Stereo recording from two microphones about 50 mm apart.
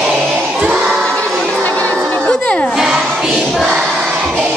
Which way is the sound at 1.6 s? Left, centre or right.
Left.